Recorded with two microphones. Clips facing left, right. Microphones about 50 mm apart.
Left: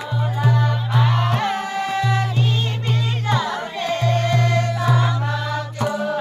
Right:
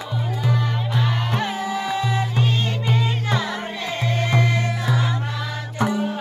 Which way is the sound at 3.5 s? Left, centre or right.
Centre.